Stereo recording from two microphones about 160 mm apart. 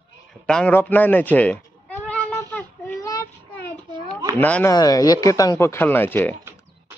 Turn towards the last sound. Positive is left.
turn(degrees=-15)  # may be behind; listen again after turning